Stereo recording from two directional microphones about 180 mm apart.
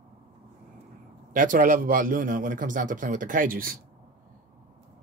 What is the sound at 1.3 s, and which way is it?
A man's voice, 50° right (ahead or behind).